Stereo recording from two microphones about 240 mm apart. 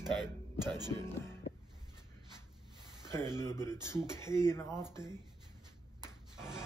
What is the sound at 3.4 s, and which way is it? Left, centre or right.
Speech, centre.